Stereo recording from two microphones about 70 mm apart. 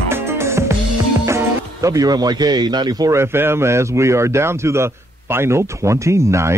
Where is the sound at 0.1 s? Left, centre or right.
Right.